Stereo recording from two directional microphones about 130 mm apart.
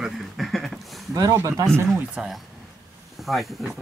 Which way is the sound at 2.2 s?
5° right (ahead or behind).